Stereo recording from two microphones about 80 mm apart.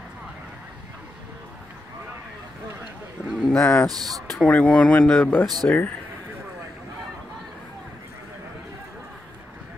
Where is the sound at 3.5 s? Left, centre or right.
Centre.